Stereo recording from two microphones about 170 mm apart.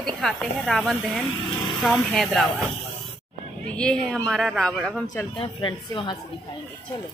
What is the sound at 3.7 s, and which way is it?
Speech, 5° left (ahead or behind).